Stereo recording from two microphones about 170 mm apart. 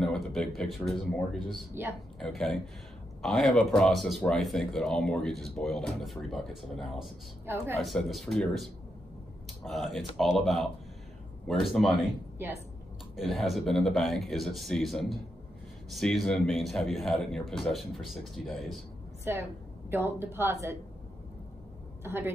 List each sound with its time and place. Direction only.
0.0 s a sound: 5° left (ahead or behind)
0.6 s speech: centre (ahead or behind)
7.4 s a woman's voice: 15° right (ahead or behind)
7.8 s speech: centre (ahead or behind)
9.7 s speech: centre (ahead or behind)
13.1 s speech: centre (ahead or behind)
19.3 s a woman's voice: 10° right (ahead or behind)
22.0 s a woman's voice: 15° right (ahead or behind)